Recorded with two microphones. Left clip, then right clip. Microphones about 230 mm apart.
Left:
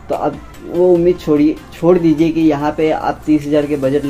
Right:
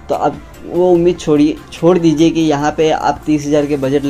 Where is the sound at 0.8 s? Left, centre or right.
Right.